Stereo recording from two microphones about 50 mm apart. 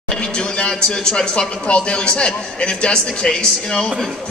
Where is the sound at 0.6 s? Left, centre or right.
Centre.